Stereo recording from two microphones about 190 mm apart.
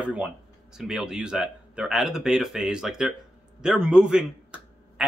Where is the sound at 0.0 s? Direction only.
5° right (ahead or behind).